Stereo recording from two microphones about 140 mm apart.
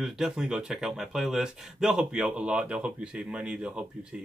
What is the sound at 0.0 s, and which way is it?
Speech, 5° right (ahead or behind).